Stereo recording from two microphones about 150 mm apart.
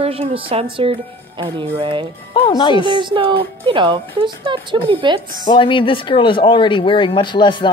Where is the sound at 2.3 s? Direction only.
30° left (ahead or behind).